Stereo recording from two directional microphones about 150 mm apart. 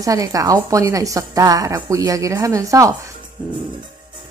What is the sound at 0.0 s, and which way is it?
A woman's voice, 20° right (ahead or behind).